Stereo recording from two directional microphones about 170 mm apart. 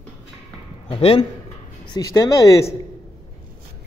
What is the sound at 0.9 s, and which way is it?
Speech, 35° left (ahead or behind).